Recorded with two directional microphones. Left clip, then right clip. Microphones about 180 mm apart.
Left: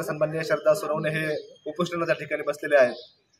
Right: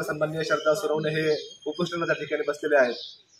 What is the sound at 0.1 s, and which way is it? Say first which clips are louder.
Speech: left 1 dB; 20° left (ahead or behind).